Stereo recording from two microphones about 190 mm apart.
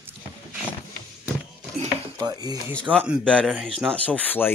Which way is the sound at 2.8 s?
5° left (ahead or behind).